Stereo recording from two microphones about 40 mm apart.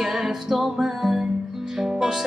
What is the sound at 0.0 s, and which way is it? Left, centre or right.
Music, centre.